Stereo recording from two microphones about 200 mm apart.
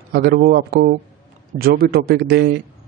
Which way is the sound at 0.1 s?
50° right (ahead or behind).